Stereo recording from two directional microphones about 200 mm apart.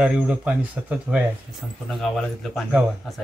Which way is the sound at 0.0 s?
5° right (ahead or behind).